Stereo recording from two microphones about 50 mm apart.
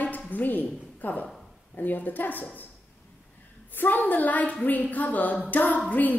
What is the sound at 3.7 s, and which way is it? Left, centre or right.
A woman's voice, left.